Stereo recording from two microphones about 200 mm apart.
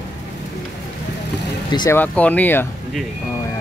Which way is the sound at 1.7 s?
20° left (ahead or behind).